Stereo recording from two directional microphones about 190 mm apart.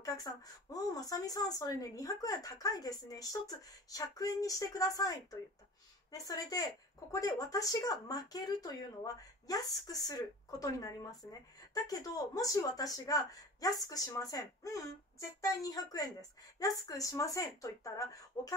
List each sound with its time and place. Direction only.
0.0 s a woman's voice: 20° left (ahead or behind)
6.1 s a woman's voice: 20° left (ahead or behind)